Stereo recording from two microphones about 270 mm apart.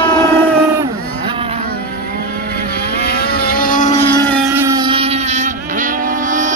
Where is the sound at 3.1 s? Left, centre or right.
Left.